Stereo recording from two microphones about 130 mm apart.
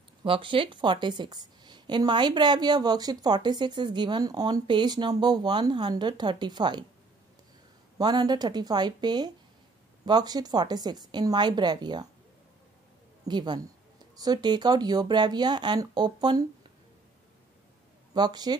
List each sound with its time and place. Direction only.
0.2 s a woman's voice: 40° right (ahead or behind)
8.0 s a woman's voice: 30° right (ahead or behind)
13.3 s a woman's voice: 35° right (ahead or behind)
18.1 s a woman's voice: 35° right (ahead or behind)